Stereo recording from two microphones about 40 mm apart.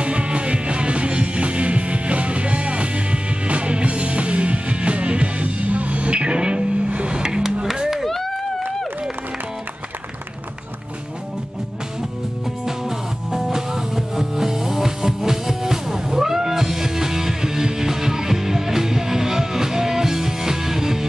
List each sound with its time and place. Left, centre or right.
0.0 s music: right; by 8.0 s centre
8.0 s chop: centre
12.6 s music: centre